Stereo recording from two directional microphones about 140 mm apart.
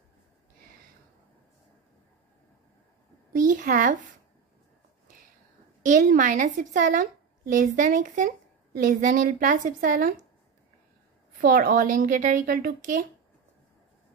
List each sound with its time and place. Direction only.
3.3 s a woman's voice: 70° right (ahead or behind)
5.8 s a woman's voice: 65° right (ahead or behind)
11.4 s a woman's voice: 80° right